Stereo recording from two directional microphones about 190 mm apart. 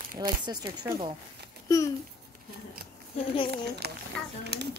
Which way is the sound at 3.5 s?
60° right (ahead or behind).